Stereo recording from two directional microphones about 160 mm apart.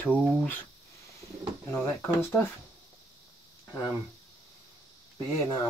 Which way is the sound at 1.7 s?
15° left (ahead or behind).